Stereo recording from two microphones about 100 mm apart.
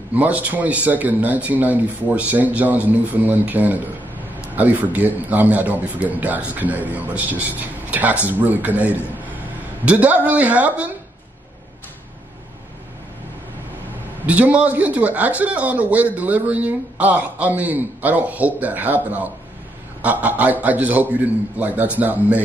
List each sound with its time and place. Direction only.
0.1 s speech: 15° right (ahead or behind)
14.2 s speech: 15° right (ahead or behind)